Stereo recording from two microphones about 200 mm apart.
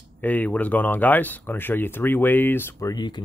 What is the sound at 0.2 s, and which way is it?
Speech, 10° left (ahead or behind).